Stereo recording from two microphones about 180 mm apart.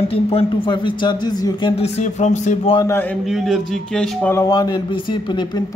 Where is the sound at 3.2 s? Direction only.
Centre (ahead or behind).